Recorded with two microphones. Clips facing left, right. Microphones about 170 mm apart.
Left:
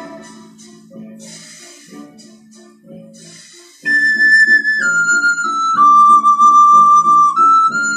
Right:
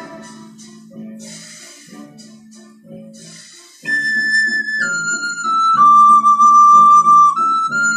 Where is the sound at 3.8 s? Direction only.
Centre (ahead or behind).